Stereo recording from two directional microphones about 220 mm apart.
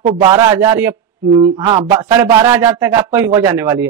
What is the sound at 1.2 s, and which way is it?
A man's voice, 20° right (ahead or behind).